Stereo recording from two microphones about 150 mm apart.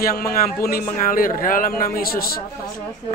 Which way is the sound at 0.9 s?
70° left (ahead or behind).